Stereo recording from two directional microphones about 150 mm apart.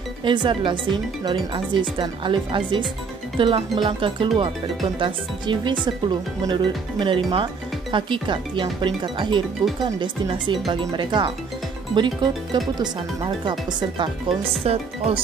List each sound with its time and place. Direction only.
0.2 s speech: 30° right (ahead or behind)